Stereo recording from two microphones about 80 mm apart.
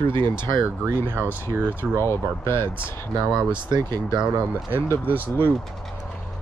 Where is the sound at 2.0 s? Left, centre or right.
Left.